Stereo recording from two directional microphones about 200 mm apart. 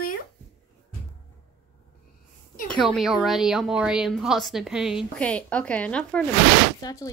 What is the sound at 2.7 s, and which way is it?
Speech, centre (ahead or behind).